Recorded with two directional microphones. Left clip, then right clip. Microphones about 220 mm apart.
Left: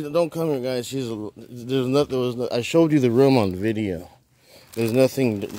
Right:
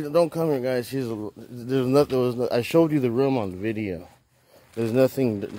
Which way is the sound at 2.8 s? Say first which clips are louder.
Left 8 dB; 20° left (ahead or behind).